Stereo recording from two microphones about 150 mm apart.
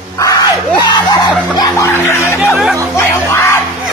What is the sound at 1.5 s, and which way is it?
Chuckle, 25° left (ahead or behind).